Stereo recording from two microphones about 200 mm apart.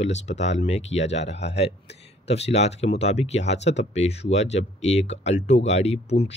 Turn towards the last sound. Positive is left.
turn(degrees=30)  # may be behind; listen again after turning